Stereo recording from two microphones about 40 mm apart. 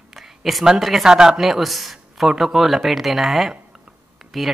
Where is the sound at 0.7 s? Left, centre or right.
Centre.